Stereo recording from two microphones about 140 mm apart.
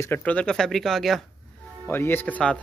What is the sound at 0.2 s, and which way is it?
Speech, 10° left (ahead or behind).